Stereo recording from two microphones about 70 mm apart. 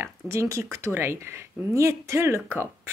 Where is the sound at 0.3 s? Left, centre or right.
Right.